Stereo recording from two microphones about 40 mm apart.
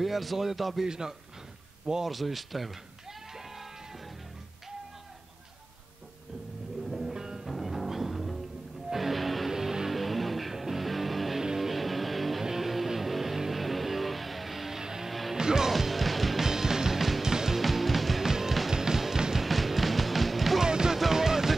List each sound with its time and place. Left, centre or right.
0.0 s speech: centre
0.8 s speech: centre
2.0 s bleat: centre
6.9 s music: centre
9.5 s music: centre
15.7 s music: centre
17.6 s music: centre
19.4 s music: centre
20.6 s music: centre